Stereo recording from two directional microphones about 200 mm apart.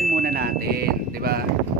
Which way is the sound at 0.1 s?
50° right (ahead or behind).